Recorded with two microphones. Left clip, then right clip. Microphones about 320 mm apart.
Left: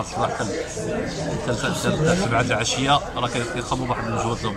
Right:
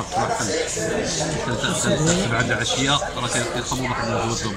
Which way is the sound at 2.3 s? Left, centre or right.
Centre.